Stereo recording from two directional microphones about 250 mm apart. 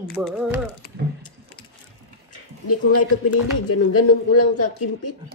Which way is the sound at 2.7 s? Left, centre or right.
Left.